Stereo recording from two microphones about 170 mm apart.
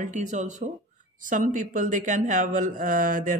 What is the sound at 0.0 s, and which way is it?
Speech, 45° right (ahead or behind).